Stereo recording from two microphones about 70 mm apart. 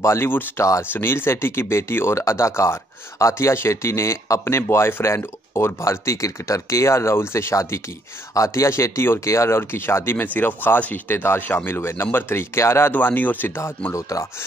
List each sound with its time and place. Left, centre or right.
0.0 s speech: left
0.9 s speech: left
12.9 s speech: left
13.9 s speech: left